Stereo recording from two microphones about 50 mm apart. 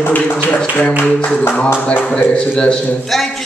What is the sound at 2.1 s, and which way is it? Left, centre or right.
Speech, left.